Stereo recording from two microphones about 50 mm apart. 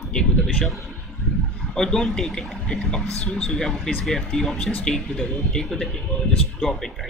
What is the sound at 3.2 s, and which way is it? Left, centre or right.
Speech, left.